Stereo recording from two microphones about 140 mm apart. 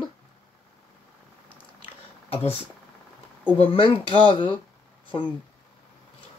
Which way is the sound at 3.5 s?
40° left (ahead or behind).